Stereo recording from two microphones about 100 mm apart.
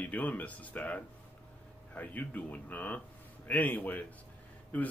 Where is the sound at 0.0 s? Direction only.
15° left (ahead or behind).